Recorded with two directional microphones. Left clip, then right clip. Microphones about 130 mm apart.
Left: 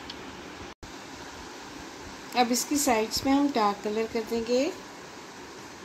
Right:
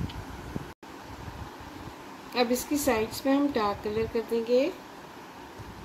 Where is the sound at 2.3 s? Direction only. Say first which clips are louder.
Left 1 dB; 30° left (ahead or behind).